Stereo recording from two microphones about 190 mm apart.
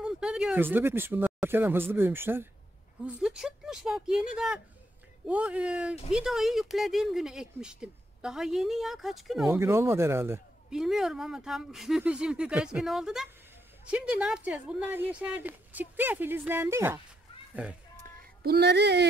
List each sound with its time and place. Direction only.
0.0 s speech: 5° right (ahead or behind)
9.5 s speech: 15° right (ahead or behind)
18.4 s speech: 55° right (ahead or behind)